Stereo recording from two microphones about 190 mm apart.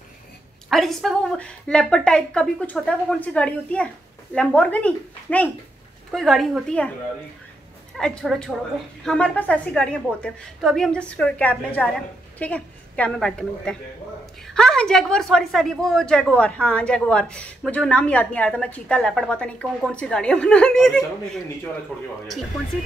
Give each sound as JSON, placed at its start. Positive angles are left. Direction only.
{"t": 0.7, "sound": "a woman's voice", "side_deg": 0}
{"t": 8.0, "sound": "a woman's voice", "side_deg": 5}